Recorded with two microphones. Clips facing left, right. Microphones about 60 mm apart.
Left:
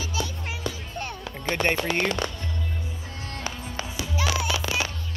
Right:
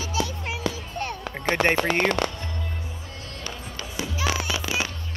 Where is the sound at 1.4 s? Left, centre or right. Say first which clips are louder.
Right 3 dB; right.